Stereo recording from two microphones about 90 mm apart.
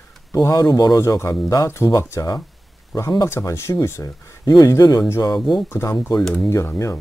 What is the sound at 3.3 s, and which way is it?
Speech, 30° left (ahead or behind).